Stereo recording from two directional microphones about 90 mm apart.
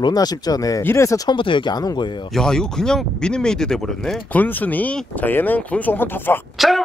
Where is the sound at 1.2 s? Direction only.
70° left (ahead or behind).